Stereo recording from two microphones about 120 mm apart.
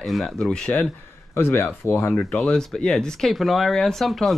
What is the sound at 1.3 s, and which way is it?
Speech, 20° left (ahead or behind).